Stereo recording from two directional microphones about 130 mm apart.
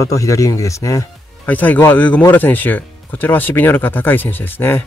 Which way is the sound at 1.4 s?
15° left (ahead or behind).